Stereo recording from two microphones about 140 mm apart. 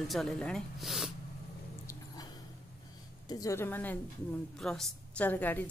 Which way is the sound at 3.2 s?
25° left (ahead or behind).